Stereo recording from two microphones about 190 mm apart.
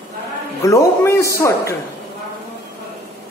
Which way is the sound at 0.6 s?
15° left (ahead or behind).